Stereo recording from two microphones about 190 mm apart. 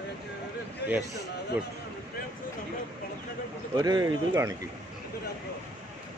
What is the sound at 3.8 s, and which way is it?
Speech, 20° right (ahead or behind).